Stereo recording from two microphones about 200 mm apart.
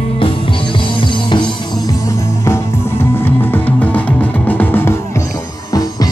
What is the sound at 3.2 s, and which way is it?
Music, 10° left (ahead or behind).